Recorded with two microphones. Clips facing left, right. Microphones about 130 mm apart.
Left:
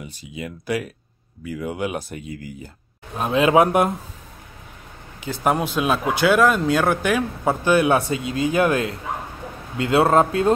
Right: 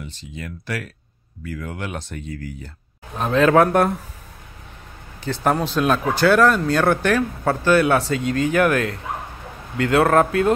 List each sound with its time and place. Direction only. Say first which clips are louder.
0.0 s speech: left 1 dB; 10° left (ahead or behind)
5.2 s a man's voice: right 1 dB; 10° left (ahead or behind)